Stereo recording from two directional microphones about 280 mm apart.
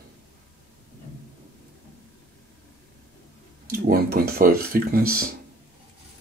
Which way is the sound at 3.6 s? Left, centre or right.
Right.